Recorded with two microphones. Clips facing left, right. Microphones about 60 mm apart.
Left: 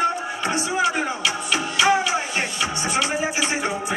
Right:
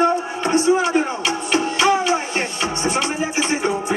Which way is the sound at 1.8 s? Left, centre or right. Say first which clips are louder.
Right 1 dB; left.